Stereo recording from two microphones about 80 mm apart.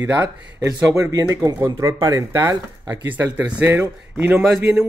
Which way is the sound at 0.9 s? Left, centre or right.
Right.